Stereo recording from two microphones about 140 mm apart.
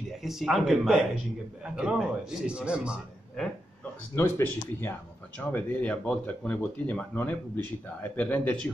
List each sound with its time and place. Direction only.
0.2 s a man's voice: centre (ahead or behind)
4.1 s speech: 15° left (ahead or behind)